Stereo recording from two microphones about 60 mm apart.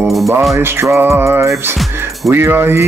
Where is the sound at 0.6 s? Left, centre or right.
Right.